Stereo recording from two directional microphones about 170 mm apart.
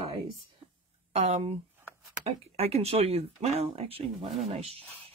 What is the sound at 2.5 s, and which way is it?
Speech, 35° right (ahead or behind).